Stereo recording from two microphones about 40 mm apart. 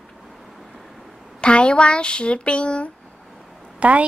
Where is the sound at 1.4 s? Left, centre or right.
Left.